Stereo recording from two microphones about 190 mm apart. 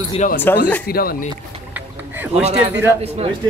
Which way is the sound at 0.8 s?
50° left (ahead or behind).